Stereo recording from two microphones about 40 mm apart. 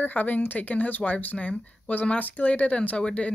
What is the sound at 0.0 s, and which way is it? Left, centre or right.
Speech, left.